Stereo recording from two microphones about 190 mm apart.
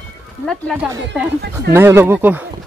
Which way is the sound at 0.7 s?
Centre (ahead or behind).